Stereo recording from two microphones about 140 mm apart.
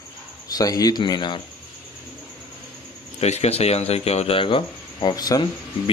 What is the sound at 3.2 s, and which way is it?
Speech, 50° left (ahead or behind).